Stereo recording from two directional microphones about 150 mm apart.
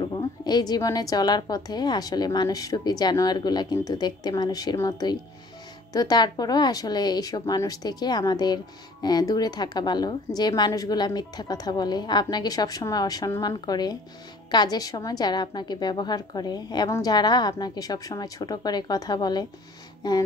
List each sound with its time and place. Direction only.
0.0 s a woman's voice: 30° left (ahead or behind)